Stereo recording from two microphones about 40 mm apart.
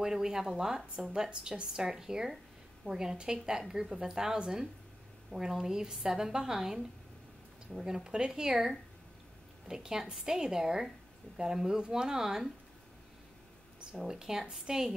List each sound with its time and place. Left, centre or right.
0.0 s a woman's voice: centre
13.9 s a woman's voice: centre